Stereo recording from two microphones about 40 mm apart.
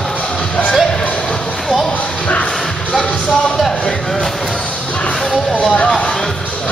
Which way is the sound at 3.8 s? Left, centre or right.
Centre.